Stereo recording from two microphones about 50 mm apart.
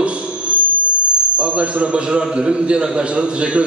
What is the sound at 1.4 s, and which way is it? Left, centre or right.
A man's voice, right.